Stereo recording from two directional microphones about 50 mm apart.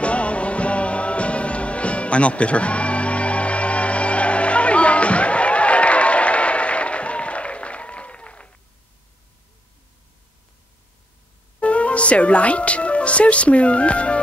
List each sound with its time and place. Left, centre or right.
0.0 s music: left
11.6 s speech: left